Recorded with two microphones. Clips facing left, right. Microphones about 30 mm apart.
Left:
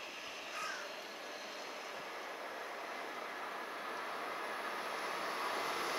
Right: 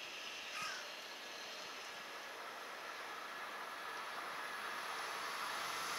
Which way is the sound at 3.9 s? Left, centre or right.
Left.